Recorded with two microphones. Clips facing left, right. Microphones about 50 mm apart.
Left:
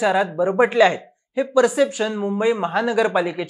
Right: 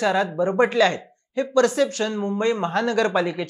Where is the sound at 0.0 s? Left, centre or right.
Centre.